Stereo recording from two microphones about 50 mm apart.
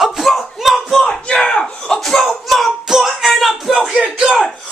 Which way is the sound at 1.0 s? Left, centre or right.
Centre.